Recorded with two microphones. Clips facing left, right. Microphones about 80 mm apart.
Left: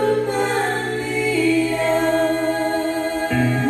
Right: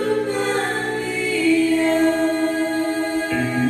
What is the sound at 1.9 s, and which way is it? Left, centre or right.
Choir, centre.